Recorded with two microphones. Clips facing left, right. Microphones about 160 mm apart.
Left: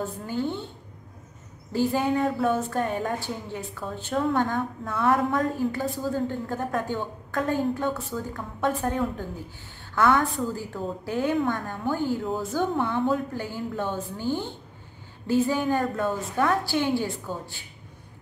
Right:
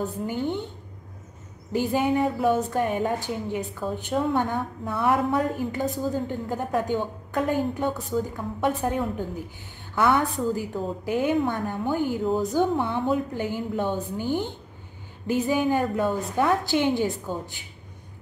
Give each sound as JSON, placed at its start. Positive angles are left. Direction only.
{"t": 0.0, "sound": "a woman's voice", "side_deg": -15}
{"t": 1.7, "sound": "a woman's voice", "side_deg": -15}